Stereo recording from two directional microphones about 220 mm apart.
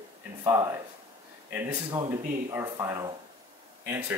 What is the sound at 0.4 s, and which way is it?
Speech, 15° right (ahead or behind).